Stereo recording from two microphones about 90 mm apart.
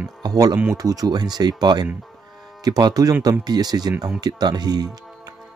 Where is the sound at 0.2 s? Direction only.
50° right (ahead or behind).